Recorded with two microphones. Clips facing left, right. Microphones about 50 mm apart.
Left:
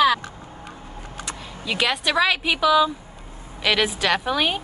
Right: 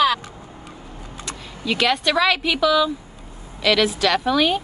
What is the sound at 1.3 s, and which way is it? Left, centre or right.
A woman's voice, centre.